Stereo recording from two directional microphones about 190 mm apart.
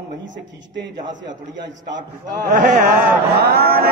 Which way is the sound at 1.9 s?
45° right (ahead or behind).